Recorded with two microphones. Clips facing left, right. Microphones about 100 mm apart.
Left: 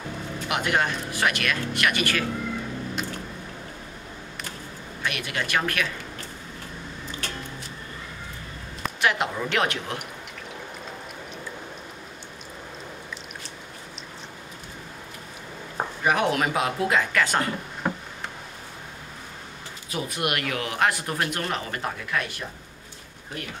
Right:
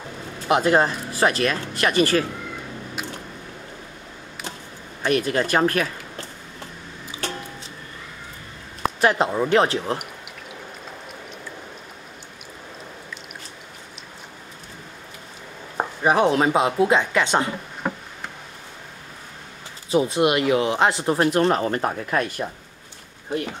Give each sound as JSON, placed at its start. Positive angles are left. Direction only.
{"t": 0.5, "sound": "speech", "side_deg": -35}
{"t": 5.0, "sound": "speech", "side_deg": -35}
{"t": 7.1, "sound": "music", "side_deg": -10}
{"t": 8.8, "sound": "speech", "side_deg": -35}
{"t": 15.8, "sound": "speech", "side_deg": -30}
{"t": 17.8, "sound": "tick-tock", "side_deg": 0}
{"t": 19.9, "sound": "speech", "side_deg": -25}